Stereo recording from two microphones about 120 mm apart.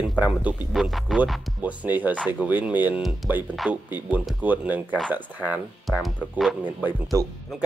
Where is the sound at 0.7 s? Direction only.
Centre (ahead or behind).